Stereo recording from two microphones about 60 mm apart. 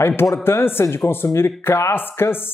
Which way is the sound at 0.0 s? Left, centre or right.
Left.